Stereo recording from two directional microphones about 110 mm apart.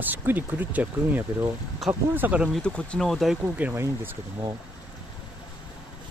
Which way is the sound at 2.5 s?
10° left (ahead or behind).